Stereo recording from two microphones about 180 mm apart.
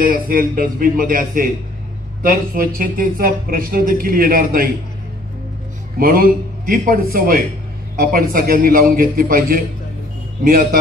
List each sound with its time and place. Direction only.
0.0 s a man's voice: 50° right (ahead or behind)
2.5 s a man's voice: 50° right (ahead or behind)
5.9 s a man's voice: 55° right (ahead or behind)